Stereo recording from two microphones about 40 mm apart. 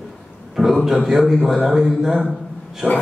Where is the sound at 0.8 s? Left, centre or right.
Centre.